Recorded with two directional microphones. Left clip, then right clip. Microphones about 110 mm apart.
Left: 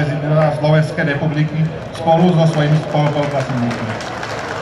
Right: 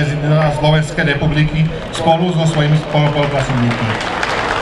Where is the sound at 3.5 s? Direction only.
5° left (ahead or behind).